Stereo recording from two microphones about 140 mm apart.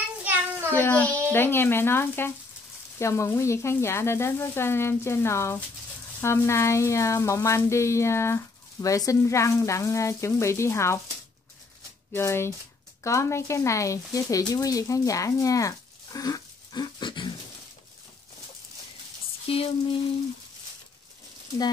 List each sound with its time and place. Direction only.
0.7 s speech: 15° left (ahead or behind)
12.1 s speech: 15° left (ahead or behind); by 17.3 s 35° left (ahead or behind)
19.4 s a sound: 40° left (ahead or behind)